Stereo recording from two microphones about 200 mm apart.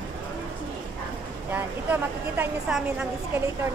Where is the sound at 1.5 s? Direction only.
10° right (ahead or behind).